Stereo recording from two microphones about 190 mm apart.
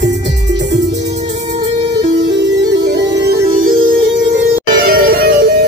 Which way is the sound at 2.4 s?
65° right (ahead or behind).